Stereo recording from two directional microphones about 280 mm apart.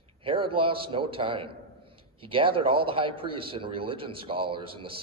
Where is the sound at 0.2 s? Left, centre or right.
Centre.